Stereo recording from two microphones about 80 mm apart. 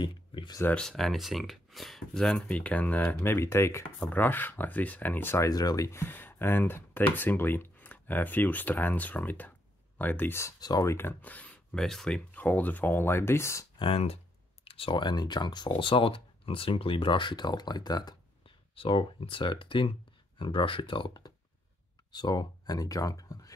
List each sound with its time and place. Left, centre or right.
0.0 s a sound: left
0.7 s speech: centre; by 3.2 s left
3.2 s speech: left
5.5 s speech: left
5.9 s speech: left
10.6 s speech: left
10.9 s speech: left
11.8 s speech: centre
12.4 s speech: left
14.9 s speech: left
18.9 s speech: left
22.1 s speech: left